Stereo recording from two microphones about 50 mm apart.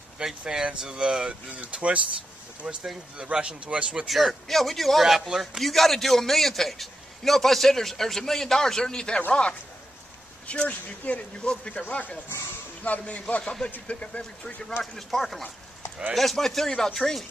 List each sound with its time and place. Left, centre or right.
0.4 s speech: centre
1.5 s speech: right
4.1 s a man's voice: centre; by 13.0 s left
13.4 s speech: centre
13.8 s speech: left
14.8 s a man's voice: centre